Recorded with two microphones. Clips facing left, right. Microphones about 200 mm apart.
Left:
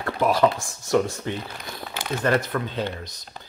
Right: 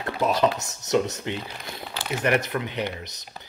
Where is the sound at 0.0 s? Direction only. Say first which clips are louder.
Left 2 dB; 20° right (ahead or behind).